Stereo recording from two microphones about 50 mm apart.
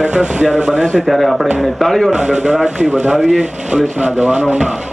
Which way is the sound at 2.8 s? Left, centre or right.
Right.